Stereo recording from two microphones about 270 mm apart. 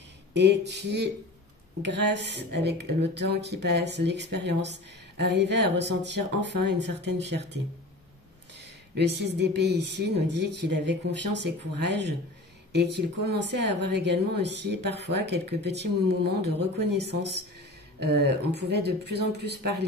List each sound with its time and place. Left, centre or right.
0.3 s speech: right
8.9 s speech: right